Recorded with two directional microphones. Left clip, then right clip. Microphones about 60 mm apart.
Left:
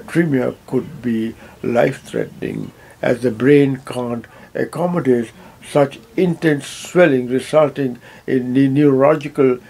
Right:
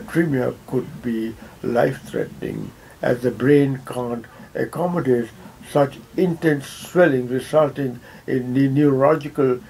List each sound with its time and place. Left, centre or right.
0.0 s speech: left